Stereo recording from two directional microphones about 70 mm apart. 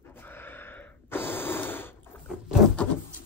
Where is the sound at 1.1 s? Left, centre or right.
Left.